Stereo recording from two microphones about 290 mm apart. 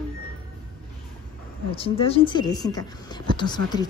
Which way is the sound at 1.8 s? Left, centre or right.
Centre.